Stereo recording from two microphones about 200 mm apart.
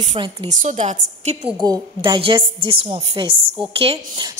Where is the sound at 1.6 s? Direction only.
20° right (ahead or behind).